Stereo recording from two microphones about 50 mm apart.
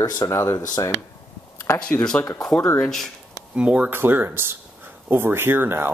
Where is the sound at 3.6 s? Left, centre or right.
Right.